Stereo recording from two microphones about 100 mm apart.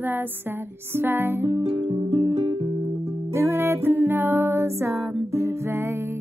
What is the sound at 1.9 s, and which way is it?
Music, 60° right (ahead or behind).